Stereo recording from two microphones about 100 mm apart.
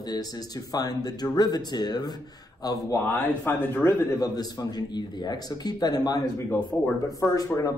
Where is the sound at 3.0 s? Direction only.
20° left (ahead or behind).